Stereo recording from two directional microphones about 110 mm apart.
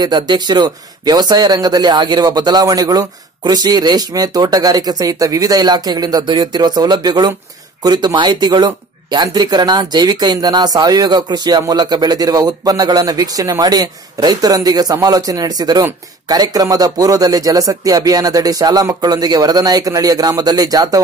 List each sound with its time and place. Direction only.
0.0 s speech: 40° right (ahead or behind)